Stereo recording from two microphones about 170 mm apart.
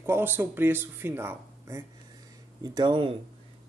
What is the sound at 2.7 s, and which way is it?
Speech, 30° right (ahead or behind).